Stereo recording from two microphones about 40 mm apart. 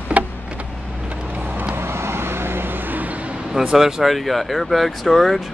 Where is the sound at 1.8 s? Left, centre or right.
Right.